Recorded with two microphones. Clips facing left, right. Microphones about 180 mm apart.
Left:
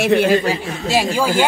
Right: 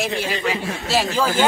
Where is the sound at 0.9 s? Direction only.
15° left (ahead or behind).